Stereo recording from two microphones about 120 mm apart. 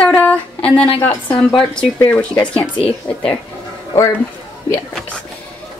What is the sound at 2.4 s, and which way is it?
Speech, 10° left (ahead or behind).